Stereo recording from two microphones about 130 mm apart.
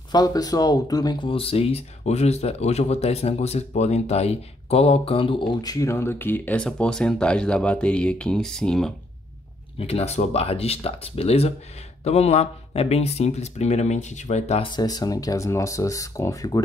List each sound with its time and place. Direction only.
0.1 s speech: 30° left (ahead or behind); by 8.9 s 5° left (ahead or behind)
9.8 s speech: 50° left (ahead or behind)
14.6 s speech: 35° left (ahead or behind)